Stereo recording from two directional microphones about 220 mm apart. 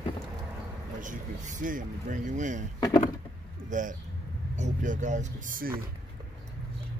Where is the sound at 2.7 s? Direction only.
15° left (ahead or behind).